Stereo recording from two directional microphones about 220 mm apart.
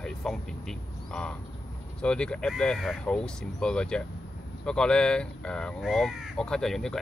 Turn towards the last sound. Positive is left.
turn(degrees=0)  # may be behind; listen again after turning